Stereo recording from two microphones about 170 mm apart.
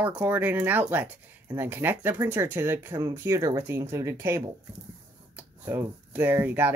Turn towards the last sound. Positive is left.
turn(degrees=-10)  # may be behind; listen again after turning